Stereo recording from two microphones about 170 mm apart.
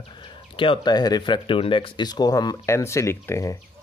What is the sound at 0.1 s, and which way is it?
Speech, 30° left (ahead or behind).